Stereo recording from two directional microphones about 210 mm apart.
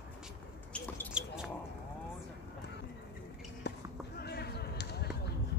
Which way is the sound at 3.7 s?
55° left (ahead or behind).